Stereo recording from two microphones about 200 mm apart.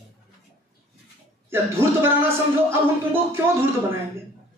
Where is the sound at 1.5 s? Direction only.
10° right (ahead or behind).